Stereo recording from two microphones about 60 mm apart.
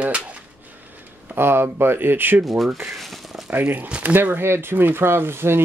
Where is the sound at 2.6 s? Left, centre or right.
Centre.